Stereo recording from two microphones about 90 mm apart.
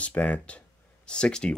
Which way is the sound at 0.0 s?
15° left (ahead or behind).